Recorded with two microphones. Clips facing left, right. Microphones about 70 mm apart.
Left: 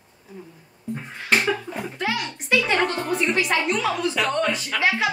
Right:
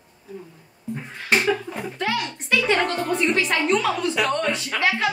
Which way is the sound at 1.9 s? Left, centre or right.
Centre.